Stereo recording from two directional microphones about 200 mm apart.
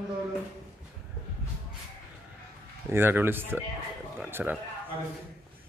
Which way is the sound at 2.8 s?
10° right (ahead or behind).